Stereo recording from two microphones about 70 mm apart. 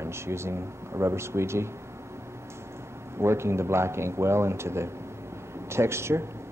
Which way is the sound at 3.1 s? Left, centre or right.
Right.